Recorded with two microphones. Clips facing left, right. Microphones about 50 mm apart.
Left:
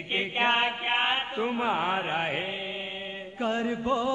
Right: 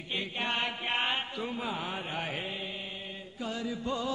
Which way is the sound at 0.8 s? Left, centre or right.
Left.